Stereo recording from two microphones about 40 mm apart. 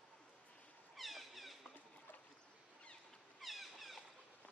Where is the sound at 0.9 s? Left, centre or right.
Centre.